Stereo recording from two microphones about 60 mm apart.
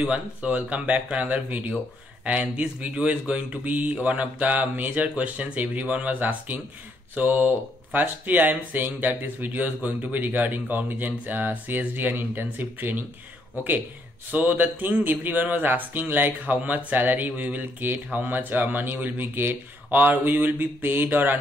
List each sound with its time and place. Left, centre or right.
0.0 s speech: right